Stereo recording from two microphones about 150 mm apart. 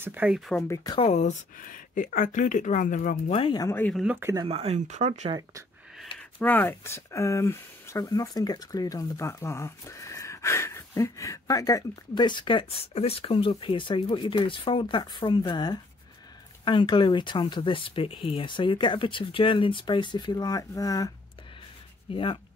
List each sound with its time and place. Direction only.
0.0 s speech: 10° right (ahead or behind)
0.7 s speech: 25° left (ahead or behind)
1.0 s speech: 50° left (ahead or behind)
1.7 s speech: 60° left (ahead or behind)
3.3 s speech: 35° left (ahead or behind)
3.6 s speech: 15° left (ahead or behind)
3.9 s speech: 5° right (ahead or behind)
4.2 s speech: 20° right (ahead or behind)
4.5 s speech: 40° right (ahead or behind)
6.4 s speech: 15° left (ahead or behind)
22.1 s speech: 35° left (ahead or behind)